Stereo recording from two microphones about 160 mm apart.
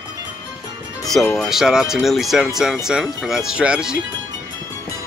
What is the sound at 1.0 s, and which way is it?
Speech, 5° left (ahead or behind).